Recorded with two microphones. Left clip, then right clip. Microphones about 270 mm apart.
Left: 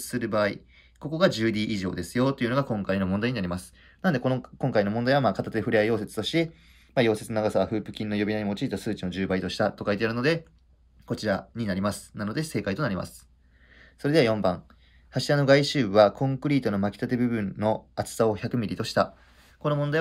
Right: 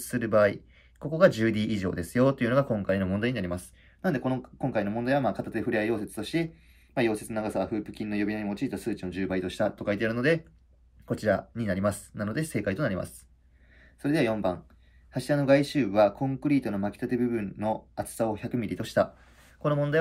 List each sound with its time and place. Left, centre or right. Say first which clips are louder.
0.0 s speech: right 3 dB; centre
14.0 s speech: left 4 dB; left; by 20.0 s centre